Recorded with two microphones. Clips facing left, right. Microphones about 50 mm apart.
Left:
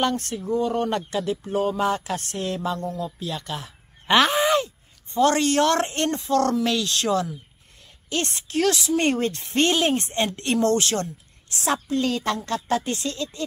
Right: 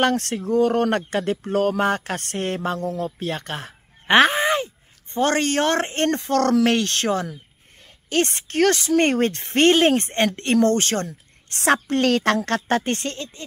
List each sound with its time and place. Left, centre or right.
0.0 s a woman's voice: right
1.8 s a woman's voice: right
6.0 s a woman's voice: right
8.1 s a woman's voice: right
11.4 s a woman's voice: right